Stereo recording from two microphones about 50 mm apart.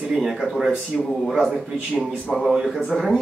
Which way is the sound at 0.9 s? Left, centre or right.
Centre.